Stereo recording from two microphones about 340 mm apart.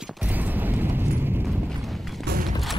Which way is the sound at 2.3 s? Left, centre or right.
Right.